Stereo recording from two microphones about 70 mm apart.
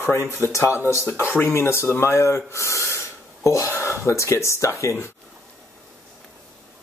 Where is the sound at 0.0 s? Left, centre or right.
Left.